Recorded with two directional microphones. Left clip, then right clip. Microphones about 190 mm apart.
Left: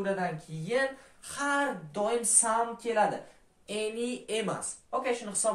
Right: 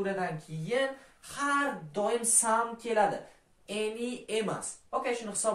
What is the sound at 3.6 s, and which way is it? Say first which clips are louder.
Speech: left 1 dB; 15° left (ahead or behind).